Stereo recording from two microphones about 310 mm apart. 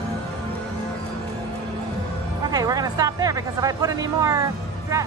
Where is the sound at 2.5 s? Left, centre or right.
Centre.